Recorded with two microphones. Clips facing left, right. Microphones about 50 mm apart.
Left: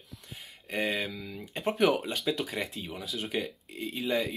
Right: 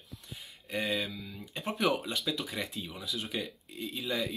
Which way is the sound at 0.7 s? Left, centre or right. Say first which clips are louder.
Left 2 dB; left.